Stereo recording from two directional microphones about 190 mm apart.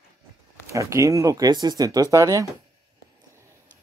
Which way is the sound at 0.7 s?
15° right (ahead or behind).